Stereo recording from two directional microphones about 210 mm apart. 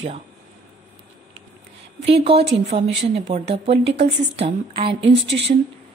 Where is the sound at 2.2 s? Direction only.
30° right (ahead or behind).